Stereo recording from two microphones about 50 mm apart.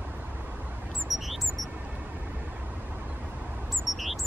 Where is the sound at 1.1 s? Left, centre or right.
Centre.